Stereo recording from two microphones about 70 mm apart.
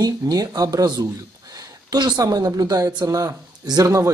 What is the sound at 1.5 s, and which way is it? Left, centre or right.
Speech, right.